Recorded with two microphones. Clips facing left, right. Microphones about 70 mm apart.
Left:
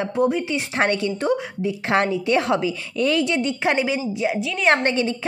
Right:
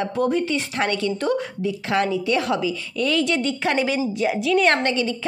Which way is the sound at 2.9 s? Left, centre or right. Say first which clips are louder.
Left 2 dB; left.